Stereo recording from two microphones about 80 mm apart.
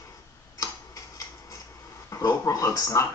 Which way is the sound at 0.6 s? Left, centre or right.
Left.